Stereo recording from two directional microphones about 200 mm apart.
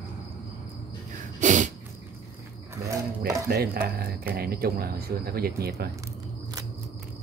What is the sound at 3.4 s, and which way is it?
Speech, 50° right (ahead or behind).